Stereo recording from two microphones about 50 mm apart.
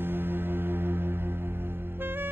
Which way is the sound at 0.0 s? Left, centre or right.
Right.